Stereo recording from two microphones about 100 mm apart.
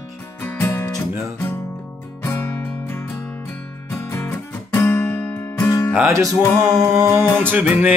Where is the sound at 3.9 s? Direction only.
25° left (ahead or behind).